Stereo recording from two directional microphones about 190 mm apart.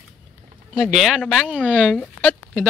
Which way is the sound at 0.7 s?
Centre (ahead or behind).